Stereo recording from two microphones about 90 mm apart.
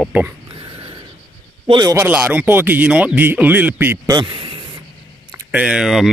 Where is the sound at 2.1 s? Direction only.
15° right (ahead or behind).